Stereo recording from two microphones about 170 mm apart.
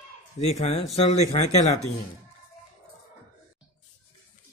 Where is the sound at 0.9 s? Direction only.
40° left (ahead or behind).